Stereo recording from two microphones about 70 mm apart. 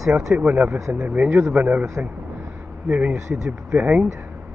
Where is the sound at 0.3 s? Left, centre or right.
Centre.